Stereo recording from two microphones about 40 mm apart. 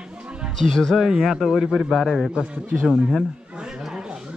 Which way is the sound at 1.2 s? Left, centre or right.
Centre.